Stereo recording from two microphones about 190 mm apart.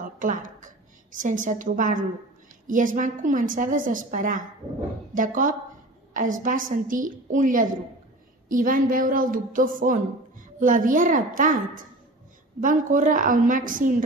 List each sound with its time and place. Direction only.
0.0 s a woman's voice: 45° right (ahead or behind)